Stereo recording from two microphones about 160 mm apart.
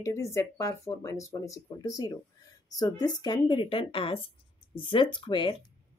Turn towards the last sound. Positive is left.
turn(degrees=30)  # may be behind; listen again after turning